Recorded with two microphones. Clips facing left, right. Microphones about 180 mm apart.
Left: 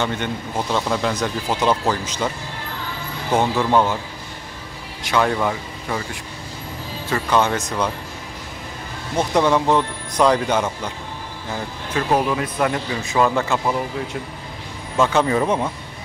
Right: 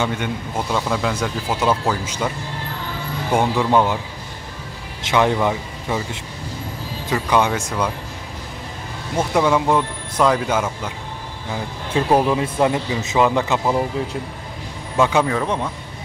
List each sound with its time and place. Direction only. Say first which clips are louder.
0.0 s speech: right 1 dB; 10° right (ahead or behind)
5.0 s a man's voice: right 2 dB; 20° right (ahead or behind)
7.1 s speech: right 1 dB; 10° right (ahead or behind)
9.1 s speech: even; 5° right (ahead or behind)
11.9 s a man's voice: right 3 dB; 30° right (ahead or behind)
15.0 s speech: right 1 dB; 10° right (ahead or behind)
15.2 s speech: left 2 dB; 5° left (ahead or behind)